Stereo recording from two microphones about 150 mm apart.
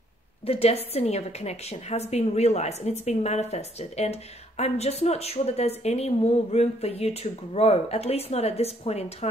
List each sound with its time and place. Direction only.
0.5 s a woman's voice: 40° left (ahead or behind)